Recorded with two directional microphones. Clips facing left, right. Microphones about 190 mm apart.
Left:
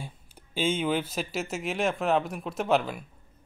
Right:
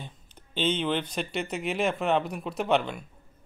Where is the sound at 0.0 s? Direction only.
10° left (ahead or behind).